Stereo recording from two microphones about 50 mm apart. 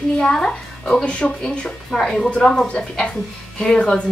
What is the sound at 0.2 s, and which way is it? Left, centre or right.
A woman's voice, centre.